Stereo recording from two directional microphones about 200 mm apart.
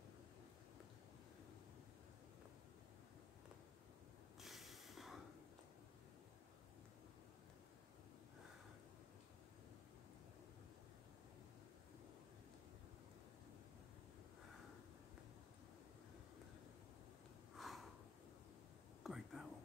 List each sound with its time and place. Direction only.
4.4 s snort: centre (ahead or behind)
17.6 s snort: centre (ahead or behind)
19.0 s whispering: centre (ahead or behind)